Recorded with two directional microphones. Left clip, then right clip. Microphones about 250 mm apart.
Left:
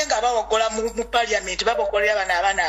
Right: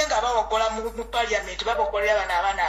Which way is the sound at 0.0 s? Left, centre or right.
Left.